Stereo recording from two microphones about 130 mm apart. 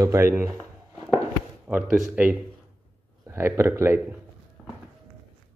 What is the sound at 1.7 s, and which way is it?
A man's voice, 10° right (ahead or behind).